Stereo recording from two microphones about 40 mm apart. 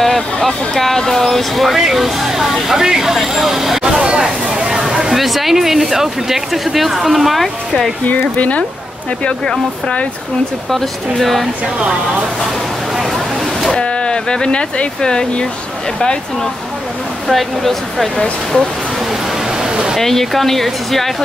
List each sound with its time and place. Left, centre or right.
0.0 s speech: centre
3.8 s a sound: right
5.1 s speech: centre
8.1 s speech: left
10.7 s speech: centre
12.9 s a sound: centre
13.7 s speech: left
17.3 s speech: centre
18.1 s speech: centre
19.6 s a sound: centre
20.0 s speech: centre